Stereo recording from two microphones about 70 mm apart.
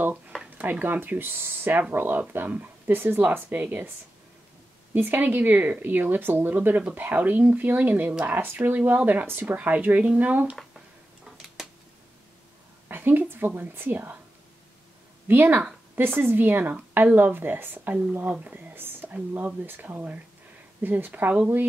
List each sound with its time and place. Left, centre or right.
0.4 s speech: right
4.9 s speech: right
8.4 s speech: right
11.3 s a sound: centre
12.8 s a sound: right
13.6 s speech: right
15.2 s speech: right
18.2 s a sound: centre
19.1 s speech: right